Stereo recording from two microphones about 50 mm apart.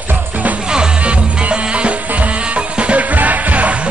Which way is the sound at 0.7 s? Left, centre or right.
Centre.